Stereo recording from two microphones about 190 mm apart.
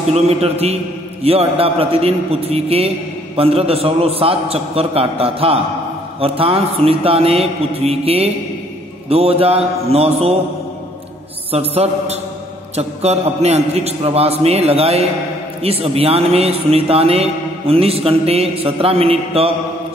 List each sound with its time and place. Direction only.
0.1 s speech: 35° right (ahead or behind)
11.5 s speech: 30° right (ahead or behind)